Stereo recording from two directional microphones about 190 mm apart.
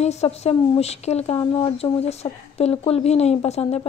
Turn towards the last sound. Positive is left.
turn(degrees=35)  # may be behind; listen again after turning